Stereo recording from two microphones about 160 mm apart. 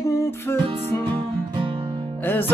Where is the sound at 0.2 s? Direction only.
15° left (ahead or behind).